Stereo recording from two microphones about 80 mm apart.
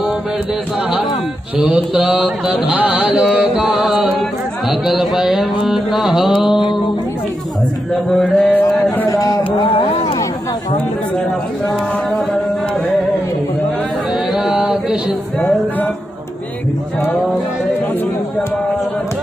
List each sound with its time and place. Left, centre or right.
1.6 s mantra: centre
2.2 s carnatic music: centre
4.6 s mantra: centre
8.1 s mantra: centre
9.1 s a sound: left
14.3 s mantra: centre